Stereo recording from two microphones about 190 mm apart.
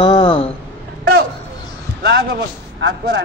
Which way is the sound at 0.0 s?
25° left (ahead or behind).